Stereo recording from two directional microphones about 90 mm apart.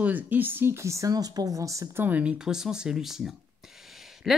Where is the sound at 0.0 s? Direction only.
20° right (ahead or behind); by 1.9 s 35° right (ahead or behind).